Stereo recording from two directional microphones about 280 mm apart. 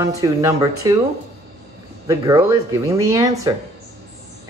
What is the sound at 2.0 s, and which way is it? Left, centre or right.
A man's voice, centre.